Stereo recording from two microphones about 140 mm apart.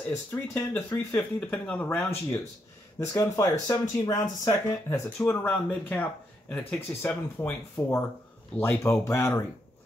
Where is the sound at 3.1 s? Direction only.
20° left (ahead or behind).